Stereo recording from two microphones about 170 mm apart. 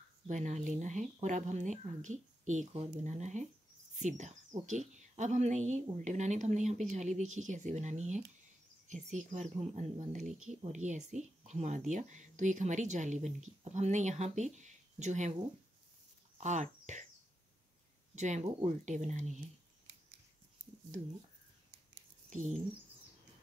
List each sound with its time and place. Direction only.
0.3 s speech: 45° right (ahead or behind)
16.3 s speech: 45° right (ahead or behind)
18.1 s speech: 45° right (ahead or behind)
22.3 s speech: 45° right (ahead or behind)